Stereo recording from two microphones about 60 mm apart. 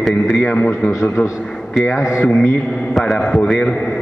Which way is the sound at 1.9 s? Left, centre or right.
Centre.